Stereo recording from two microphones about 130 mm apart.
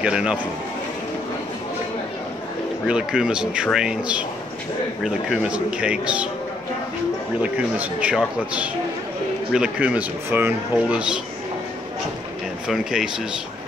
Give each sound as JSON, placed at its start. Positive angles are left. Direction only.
{"t": 0.0, "sound": "speech", "side_deg": -5}
{"t": 2.9, "sound": "speech", "side_deg": -5}
{"t": 7.5, "sound": "speech", "side_deg": -10}
{"t": 12.6, "sound": "speech", "side_deg": -5}